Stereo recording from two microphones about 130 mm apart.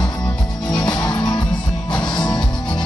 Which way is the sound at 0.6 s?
30° left (ahead or behind).